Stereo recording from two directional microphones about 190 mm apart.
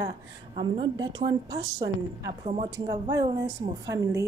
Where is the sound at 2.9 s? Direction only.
20° right (ahead or behind).